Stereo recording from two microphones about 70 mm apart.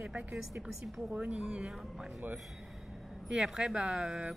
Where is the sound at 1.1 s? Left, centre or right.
Centre.